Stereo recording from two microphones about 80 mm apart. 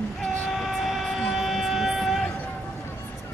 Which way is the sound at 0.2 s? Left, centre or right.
Centre.